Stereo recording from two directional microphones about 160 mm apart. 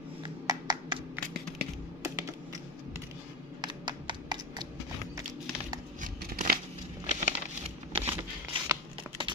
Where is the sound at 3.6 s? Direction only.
30° right (ahead or behind).